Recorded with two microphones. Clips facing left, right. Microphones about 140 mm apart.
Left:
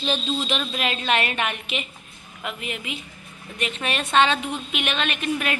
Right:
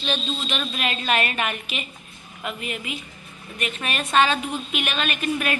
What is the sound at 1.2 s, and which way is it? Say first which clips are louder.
Speech: even; 90° left.